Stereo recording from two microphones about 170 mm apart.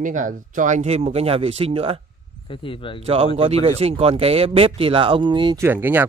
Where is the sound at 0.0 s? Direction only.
50° right (ahead or behind); by 2.0 s 35° right (ahead or behind).